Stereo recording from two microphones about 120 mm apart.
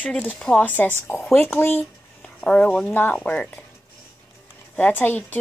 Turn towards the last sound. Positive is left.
turn(degrees=15)  # may be behind; listen again after turning